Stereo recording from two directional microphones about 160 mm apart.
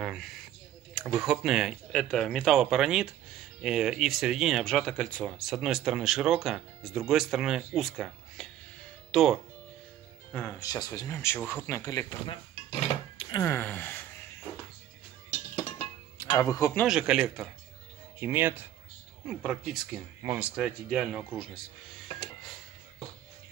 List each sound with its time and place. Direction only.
0.0 s a sound: 5° right (ahead or behind)
0.9 s speech: centre (ahead or behind)
10.6 s speech: 20° left (ahead or behind)
12.8 s dishes: 30° left (ahead or behind)
13.4 s speech: 15° left (ahead or behind)
15.5 s dishes: 25° left (ahead or behind)
16.8 s speech: 5° right (ahead or behind)
18.2 s speech: 15° right (ahead or behind)